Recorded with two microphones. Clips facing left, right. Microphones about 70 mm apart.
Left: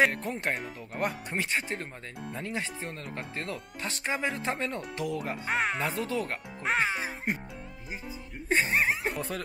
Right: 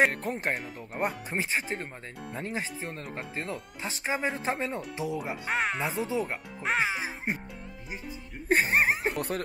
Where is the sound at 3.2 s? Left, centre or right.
Centre.